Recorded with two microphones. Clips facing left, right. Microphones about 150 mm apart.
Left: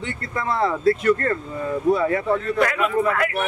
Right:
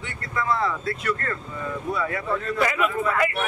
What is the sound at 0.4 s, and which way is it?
Speech, 30° left (ahead or behind).